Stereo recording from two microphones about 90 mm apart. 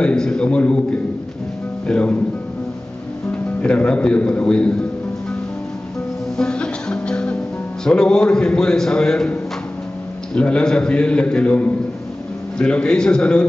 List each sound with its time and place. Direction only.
0.0 s a sound: 10° left (ahead or behind)
1.9 s music: 10° left (ahead or behind)
3.3 s speech: 10° left (ahead or behind)
6.3 s music: 10° left (ahead or behind)
7.8 s a man's voice: 10° left (ahead or behind)